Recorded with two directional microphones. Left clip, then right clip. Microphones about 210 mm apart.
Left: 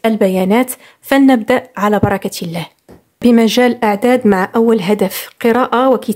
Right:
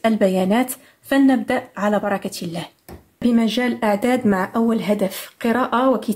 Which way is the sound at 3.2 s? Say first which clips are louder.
Left 9 dB; 40° left (ahead or behind).